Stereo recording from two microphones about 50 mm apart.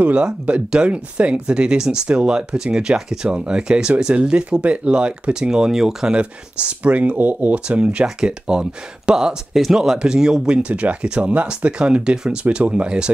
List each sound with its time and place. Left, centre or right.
0.0 s speech: right
6.1 s speech: right
7.6 s speech: right
10.6 s speech: right